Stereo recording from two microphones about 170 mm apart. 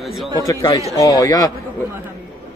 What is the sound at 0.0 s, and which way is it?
Speech, centre (ahead or behind).